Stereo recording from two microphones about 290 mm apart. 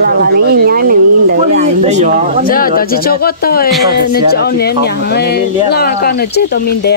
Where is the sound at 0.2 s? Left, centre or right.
Right.